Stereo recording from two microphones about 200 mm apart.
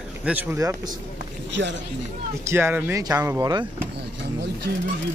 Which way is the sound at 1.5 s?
65° right (ahead or behind).